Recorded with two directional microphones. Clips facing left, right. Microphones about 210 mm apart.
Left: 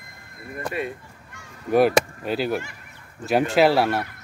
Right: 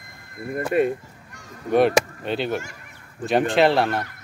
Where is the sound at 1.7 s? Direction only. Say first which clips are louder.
Even; 5° left (ahead or behind).